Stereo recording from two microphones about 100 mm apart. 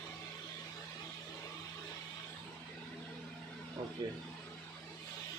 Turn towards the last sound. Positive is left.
turn(degrees=-40)  # may be behind; listen again after turning